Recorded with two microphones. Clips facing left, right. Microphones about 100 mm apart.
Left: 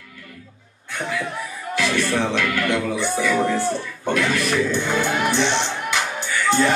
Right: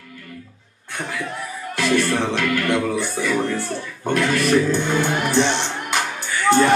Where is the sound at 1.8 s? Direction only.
45° right (ahead or behind).